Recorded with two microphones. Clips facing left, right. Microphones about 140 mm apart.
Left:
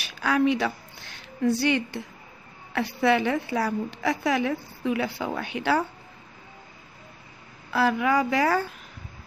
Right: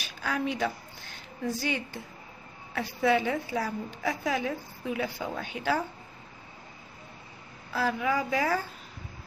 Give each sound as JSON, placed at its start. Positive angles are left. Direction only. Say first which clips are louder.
{"t": 0.0, "sound": "a sound", "louder": "left 8 dB", "side_deg": 85}
{"t": 2.7, "sound": "a woman's voice", "louder": "left 3 dB", "side_deg": 70}
{"t": 7.7, "sound": "a woman's voice", "louder": "left 6 dB", "side_deg": 75}